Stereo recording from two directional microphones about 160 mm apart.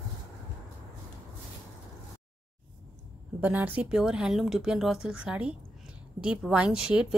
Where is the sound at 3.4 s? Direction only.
10° right (ahead or behind).